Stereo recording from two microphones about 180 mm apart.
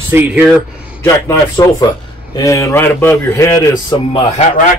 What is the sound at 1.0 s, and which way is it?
A man's voice, 20° left (ahead or behind).